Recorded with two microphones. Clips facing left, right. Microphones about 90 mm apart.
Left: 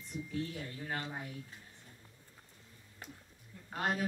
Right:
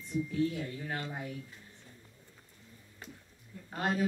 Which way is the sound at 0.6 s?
Centre (ahead or behind).